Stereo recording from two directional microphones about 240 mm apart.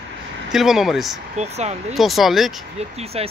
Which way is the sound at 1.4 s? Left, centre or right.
Right.